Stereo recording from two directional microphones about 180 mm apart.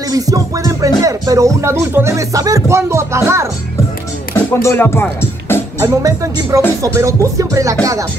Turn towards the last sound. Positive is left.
turn(degrees=-20)  # may be behind; listen again after turning